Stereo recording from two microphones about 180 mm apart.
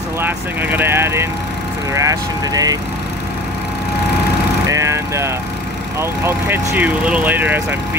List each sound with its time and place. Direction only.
0.2 s speech: 10° right (ahead or behind)
4.6 s vehicle: 15° right (ahead or behind)
5.9 s speech: 10° right (ahead or behind)